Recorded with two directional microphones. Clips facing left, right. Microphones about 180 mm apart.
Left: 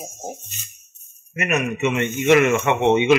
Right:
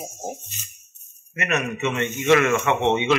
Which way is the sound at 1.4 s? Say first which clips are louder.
Left 3 dB; 15° left (ahead or behind).